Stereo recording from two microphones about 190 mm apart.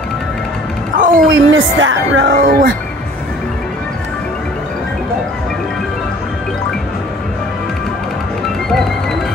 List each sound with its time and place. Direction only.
0.9 s music: 45° right (ahead or behind)
1.3 s speech: 85° right
2.4 s speech: 50° right (ahead or behind)